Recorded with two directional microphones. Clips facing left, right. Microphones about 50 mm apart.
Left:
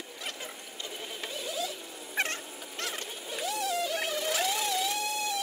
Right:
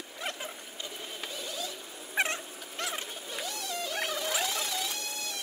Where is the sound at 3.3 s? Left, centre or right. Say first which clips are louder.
Left 6 dB; centre.